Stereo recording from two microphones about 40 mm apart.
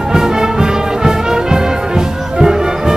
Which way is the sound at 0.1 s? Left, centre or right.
Centre.